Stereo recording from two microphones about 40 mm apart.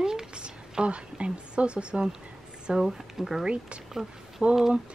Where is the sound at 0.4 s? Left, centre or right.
Right.